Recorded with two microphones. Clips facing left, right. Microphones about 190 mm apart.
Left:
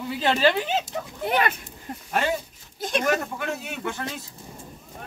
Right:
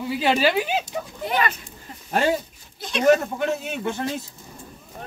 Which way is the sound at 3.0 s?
25° right (ahead or behind).